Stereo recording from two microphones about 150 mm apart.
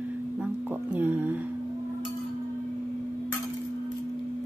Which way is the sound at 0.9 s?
10° right (ahead or behind).